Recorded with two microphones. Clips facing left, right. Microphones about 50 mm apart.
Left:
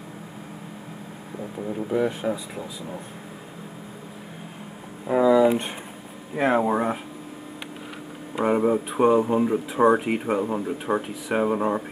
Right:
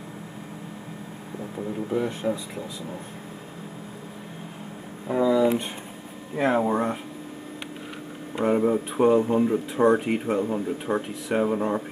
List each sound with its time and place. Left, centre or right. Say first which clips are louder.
1.6 s speech: left 3 dB; centre
5.0 s a sound: left 3 dB; centre
6.3 s speech: left 1 dB; centre
8.4 s speech: left 1 dB; centre